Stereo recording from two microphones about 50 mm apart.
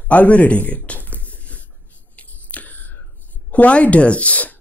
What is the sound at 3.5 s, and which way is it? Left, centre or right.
Speech, left.